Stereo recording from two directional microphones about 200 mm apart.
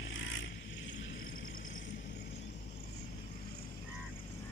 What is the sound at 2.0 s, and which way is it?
Vehicle, 50° left (ahead or behind).